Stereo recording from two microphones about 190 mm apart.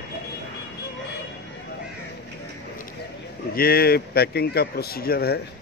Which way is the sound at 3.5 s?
55° left (ahead or behind).